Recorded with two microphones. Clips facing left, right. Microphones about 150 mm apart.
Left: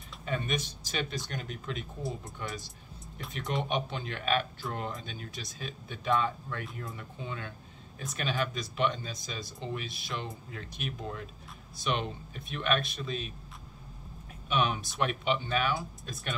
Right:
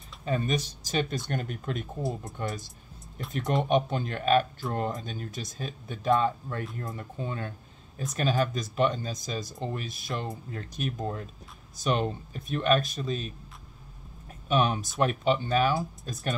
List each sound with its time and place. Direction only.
0.2 s speech: 35° right (ahead or behind)
3.6 s speech: 45° right (ahead or behind)
14.5 s speech: 40° right (ahead or behind)